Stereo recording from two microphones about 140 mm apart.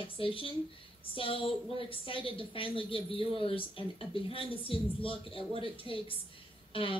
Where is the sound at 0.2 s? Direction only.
40° left (ahead or behind).